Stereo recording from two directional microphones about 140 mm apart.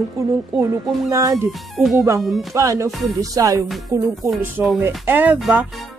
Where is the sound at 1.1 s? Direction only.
25° right (ahead or behind).